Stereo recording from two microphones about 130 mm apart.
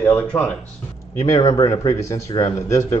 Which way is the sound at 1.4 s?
25° left (ahead or behind).